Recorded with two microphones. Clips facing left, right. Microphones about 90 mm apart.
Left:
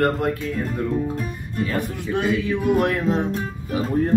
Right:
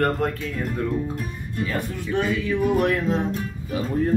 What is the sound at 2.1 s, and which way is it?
Music, 20° left (ahead or behind).